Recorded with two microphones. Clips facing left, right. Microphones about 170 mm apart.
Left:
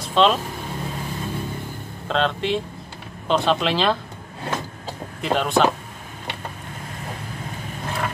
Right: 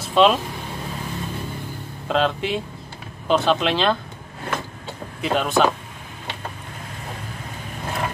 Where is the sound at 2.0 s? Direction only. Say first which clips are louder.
Right 1 dB; 5° right (ahead or behind).